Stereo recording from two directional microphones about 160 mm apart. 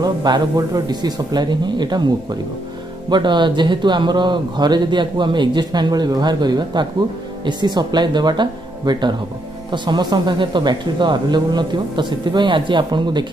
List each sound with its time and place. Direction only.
0.0 s speech: 25° right (ahead or behind)